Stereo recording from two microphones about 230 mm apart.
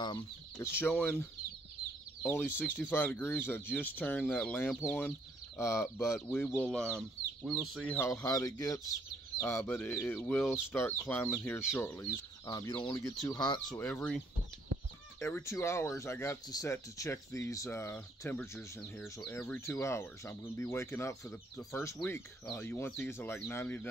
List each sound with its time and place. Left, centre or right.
0.0 s speech: centre
15.1 s speech: centre